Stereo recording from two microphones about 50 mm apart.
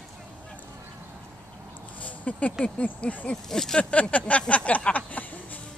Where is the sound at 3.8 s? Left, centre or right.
Left.